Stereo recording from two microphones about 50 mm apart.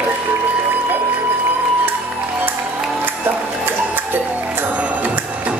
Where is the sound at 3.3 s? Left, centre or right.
Right.